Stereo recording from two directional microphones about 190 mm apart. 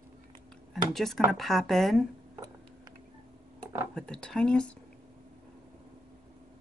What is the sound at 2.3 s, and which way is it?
Tick-tock, 20° right (ahead or behind).